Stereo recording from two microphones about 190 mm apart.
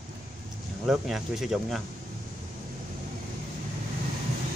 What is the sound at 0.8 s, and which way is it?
Speech, centre (ahead or behind).